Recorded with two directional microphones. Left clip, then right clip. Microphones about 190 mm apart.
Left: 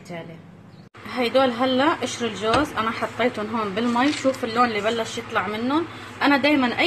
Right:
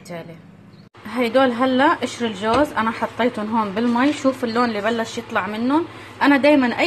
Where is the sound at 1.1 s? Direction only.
20° right (ahead or behind).